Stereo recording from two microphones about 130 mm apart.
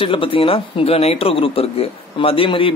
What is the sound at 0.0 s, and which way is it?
Speech, 40° left (ahead or behind).